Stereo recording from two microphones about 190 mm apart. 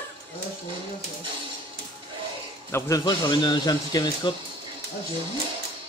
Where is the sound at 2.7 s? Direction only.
20° left (ahead or behind).